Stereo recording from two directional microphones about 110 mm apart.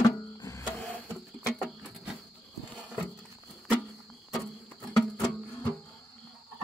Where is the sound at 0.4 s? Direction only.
30° left (ahead or behind).